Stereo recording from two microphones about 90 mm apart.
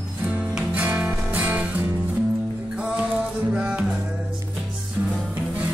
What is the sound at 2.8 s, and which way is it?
Music, 10° right (ahead or behind).